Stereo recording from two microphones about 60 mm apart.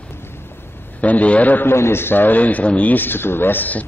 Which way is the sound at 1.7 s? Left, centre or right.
Left.